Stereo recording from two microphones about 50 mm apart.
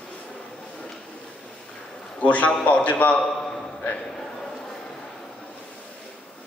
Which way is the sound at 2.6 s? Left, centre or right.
Left.